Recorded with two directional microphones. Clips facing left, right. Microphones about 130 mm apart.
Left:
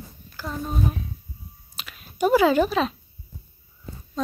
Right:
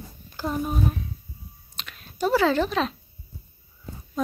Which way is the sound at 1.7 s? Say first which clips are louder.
Even; 5° left (ahead or behind).